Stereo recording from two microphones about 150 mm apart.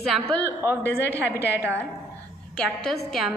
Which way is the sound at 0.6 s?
15° right (ahead or behind).